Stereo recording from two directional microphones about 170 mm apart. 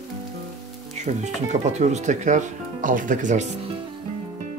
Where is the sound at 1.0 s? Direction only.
40° right (ahead or behind).